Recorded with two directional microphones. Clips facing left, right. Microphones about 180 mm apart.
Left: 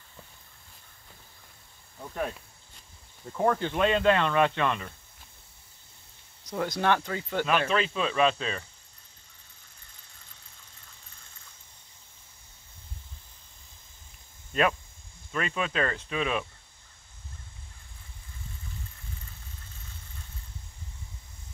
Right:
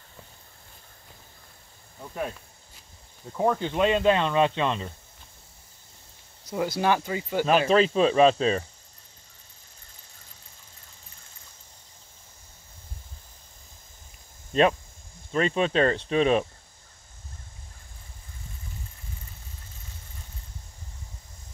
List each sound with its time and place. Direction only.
2.0 s cricket: 5° right (ahead or behind)
3.3 s speech: 15° right (ahead or behind)
6.4 s speech: 5° right (ahead or behind)
7.4 s speech: 35° right (ahead or behind)
14.5 s speech: 30° right (ahead or behind)